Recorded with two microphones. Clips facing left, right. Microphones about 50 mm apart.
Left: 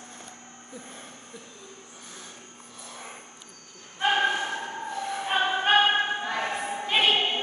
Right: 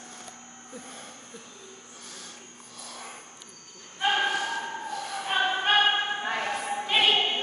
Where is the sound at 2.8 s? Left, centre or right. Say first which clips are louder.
Even; left.